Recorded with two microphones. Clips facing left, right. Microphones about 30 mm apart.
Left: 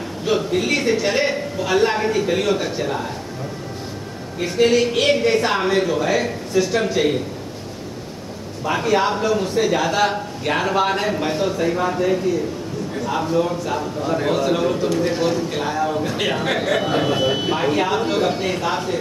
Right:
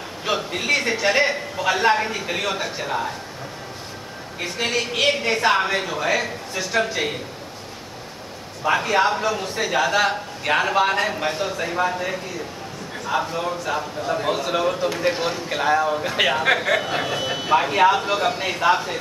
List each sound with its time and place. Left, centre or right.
0.2 s a man's voice: centre
4.4 s a man's voice: centre
8.6 s a man's voice: centre
16.9 s a man's voice: centre
17.5 s a man's voice: centre